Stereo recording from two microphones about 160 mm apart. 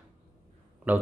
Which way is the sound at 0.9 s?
10° right (ahead or behind).